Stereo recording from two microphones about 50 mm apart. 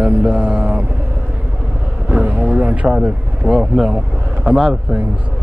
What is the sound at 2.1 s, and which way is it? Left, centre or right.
Speech, right.